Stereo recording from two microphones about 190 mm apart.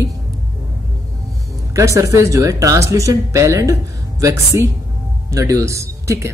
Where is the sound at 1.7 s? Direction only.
15° right (ahead or behind).